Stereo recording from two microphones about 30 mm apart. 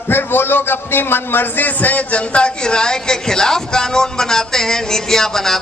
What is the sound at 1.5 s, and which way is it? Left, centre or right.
Speech, left.